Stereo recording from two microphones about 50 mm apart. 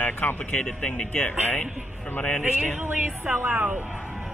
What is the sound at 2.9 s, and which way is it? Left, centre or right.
Speech, right.